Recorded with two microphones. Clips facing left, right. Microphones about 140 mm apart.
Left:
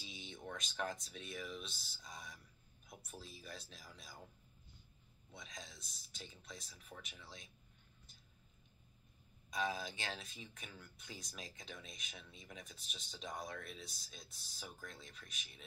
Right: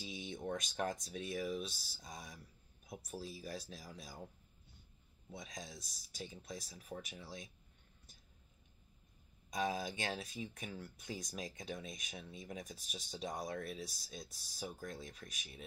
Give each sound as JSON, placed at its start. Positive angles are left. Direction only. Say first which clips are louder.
{"t": 0.0, "sound": "speech", "louder": "right 7 dB", "side_deg": -45}
{"t": 5.3, "sound": "speech", "louder": "right 5 dB", "side_deg": -40}
{"t": 9.5, "sound": "speech", "louder": "right 3 dB", "side_deg": -40}